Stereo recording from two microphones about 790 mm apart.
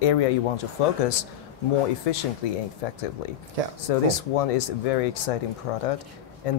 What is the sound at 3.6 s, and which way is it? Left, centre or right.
Speech, right.